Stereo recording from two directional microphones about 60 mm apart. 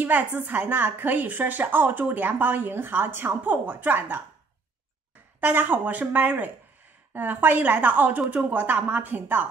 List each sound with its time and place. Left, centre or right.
0.0 s speech: right
5.4 s speech: right